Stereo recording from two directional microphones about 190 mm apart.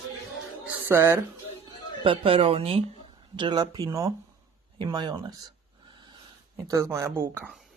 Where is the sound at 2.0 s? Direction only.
25° right (ahead or behind).